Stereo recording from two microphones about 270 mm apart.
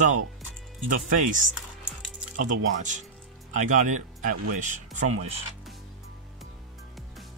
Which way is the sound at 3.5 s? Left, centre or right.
Right.